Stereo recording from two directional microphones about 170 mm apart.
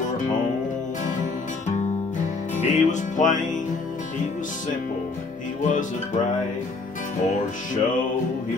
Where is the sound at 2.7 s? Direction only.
45° left (ahead or behind).